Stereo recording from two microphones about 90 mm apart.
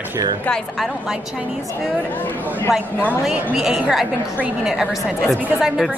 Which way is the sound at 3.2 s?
10° right (ahead or behind).